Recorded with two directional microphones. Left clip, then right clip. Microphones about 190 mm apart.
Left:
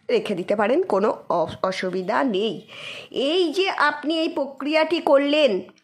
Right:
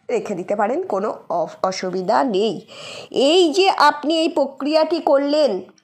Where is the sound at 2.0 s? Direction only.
5° right (ahead or behind).